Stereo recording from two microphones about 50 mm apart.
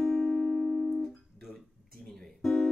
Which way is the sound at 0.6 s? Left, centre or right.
Centre.